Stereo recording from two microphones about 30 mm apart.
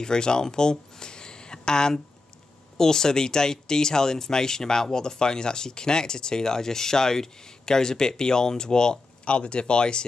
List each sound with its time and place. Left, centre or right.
0.0 s speech: left
9.2 s speech: left